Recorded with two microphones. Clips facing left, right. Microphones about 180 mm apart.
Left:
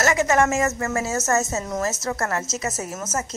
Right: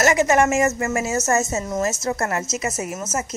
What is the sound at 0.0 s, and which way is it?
Speech, 20° right (ahead or behind).